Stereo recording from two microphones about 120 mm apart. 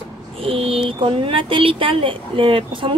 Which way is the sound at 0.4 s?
50° right (ahead or behind).